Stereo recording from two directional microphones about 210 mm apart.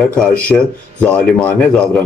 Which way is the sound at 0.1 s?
5° left (ahead or behind).